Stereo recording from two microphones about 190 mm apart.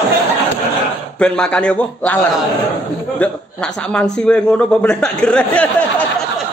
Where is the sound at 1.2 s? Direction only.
5° left (ahead or behind).